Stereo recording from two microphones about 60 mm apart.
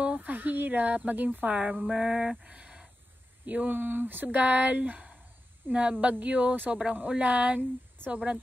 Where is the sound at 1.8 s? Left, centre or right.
Centre.